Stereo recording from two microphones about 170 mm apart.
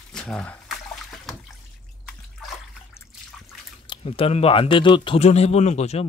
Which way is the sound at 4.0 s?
35° left (ahead or behind).